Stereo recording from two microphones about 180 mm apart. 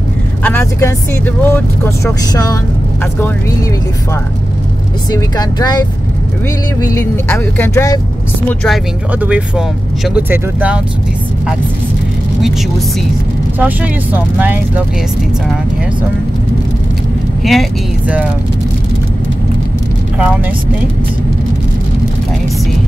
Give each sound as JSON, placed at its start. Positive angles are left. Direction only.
{"t": 0.4, "sound": "speech", "side_deg": 10}
{"t": 5.1, "sound": "speech", "side_deg": 20}
{"t": 6.9, "sound": "speech", "side_deg": 10}
{"t": 8.5, "sound": "speech", "side_deg": 0}
{"t": 13.6, "sound": "speech", "side_deg": -10}
{"t": 17.4, "sound": "speech", "side_deg": 0}